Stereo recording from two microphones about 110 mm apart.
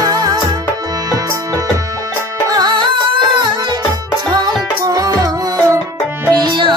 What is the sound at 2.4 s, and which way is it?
Music, 35° right (ahead or behind).